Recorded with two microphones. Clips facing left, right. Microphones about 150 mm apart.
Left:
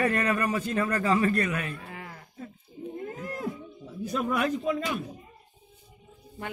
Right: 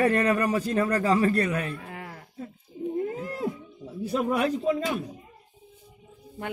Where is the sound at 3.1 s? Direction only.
30° right (ahead or behind).